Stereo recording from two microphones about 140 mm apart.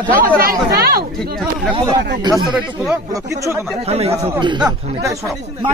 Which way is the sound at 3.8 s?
45° right (ahead or behind).